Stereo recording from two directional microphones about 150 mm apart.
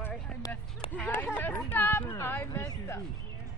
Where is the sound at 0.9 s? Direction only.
10° left (ahead or behind).